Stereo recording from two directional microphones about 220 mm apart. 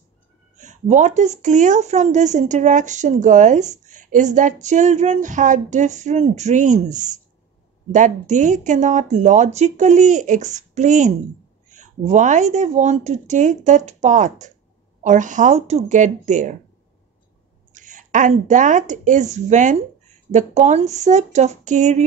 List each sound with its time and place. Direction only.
0.6 s speech: 35° right (ahead or behind)
17.7 s speech: 35° right (ahead or behind)